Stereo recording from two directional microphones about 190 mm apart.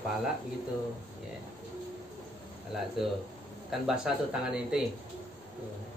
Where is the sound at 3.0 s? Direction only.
Centre (ahead or behind).